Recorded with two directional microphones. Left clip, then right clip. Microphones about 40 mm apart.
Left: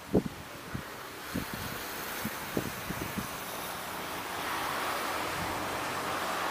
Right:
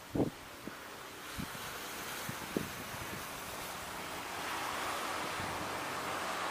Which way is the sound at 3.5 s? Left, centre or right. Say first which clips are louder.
Left 5 dB; right.